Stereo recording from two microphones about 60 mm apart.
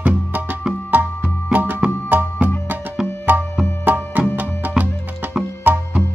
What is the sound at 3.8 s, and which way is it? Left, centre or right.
Music, right.